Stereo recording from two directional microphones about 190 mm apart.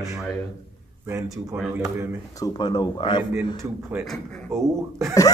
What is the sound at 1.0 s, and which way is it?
Speech, 15° right (ahead or behind).